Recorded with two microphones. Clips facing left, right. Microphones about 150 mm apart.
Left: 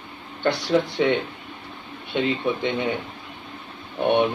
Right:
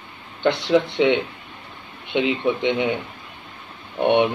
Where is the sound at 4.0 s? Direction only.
20° right (ahead or behind).